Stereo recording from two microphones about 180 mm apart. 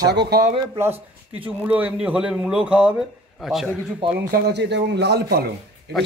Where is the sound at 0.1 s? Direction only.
65° right (ahead or behind).